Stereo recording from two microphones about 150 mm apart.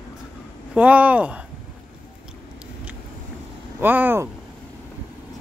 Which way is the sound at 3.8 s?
10° right (ahead or behind).